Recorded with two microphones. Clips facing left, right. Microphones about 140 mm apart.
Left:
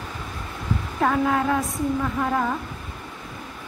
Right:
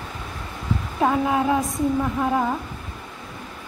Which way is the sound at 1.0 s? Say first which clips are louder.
Right 1 dB; 15° right (ahead or behind).